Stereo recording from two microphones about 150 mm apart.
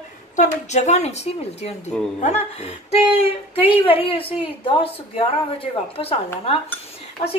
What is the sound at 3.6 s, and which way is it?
A woman's voice, 40° left (ahead or behind).